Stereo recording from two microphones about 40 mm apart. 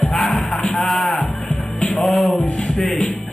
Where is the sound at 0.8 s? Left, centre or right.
Centre.